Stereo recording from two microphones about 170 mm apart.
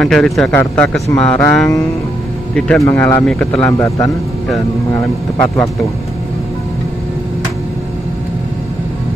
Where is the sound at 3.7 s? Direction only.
15° left (ahead or behind).